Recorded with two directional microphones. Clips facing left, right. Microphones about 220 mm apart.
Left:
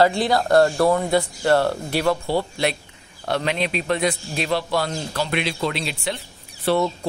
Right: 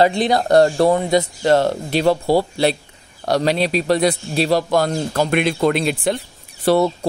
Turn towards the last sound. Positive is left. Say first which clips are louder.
# right 5 dB
turn(degrees=-35)  # may be behind; listen again after turning